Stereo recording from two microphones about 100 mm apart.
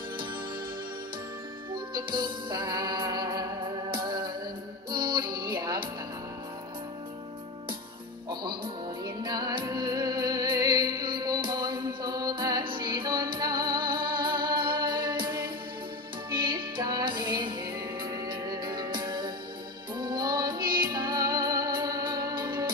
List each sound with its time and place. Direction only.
1.7 s music: 50° right (ahead or behind)
9.0 s music: 40° right (ahead or behind)